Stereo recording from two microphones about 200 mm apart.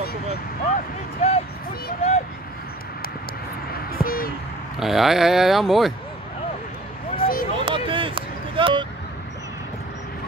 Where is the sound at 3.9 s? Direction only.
45° left (ahead or behind).